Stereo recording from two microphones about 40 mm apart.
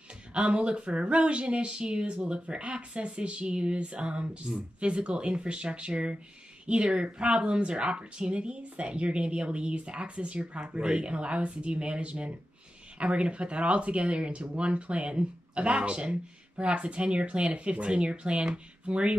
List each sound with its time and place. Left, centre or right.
0.4 s speech: right